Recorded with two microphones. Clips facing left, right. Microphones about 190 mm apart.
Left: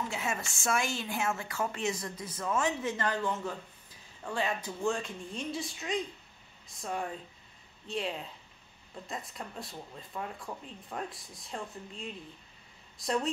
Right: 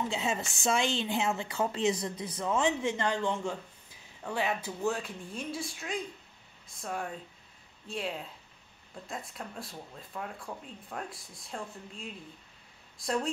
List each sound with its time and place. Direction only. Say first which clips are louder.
0.1 s a woman's voice: right 3 dB; 25° right (ahead or behind); by 13.3 s centre (ahead or behind)